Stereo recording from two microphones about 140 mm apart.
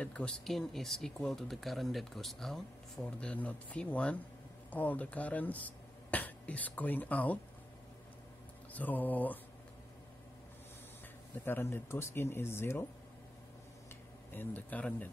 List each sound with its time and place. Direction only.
0.0 s speech: 10° left (ahead or behind)
8.7 s speech: 10° left (ahead or behind)
11.4 s speech: 15° left (ahead or behind)
14.3 s speech: 15° left (ahead or behind)